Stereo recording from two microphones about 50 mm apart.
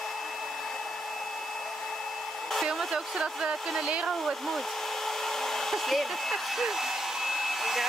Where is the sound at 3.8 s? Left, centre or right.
Centre.